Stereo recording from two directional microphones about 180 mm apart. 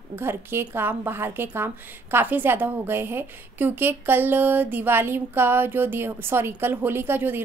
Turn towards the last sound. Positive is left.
turn(degrees=-10)  # may be behind; listen again after turning